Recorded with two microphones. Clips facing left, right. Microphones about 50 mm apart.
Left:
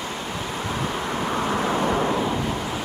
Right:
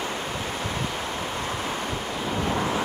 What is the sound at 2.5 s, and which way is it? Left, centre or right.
Vehicle, right.